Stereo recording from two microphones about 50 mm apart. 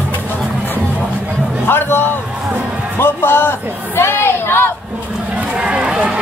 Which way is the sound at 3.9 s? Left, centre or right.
Left.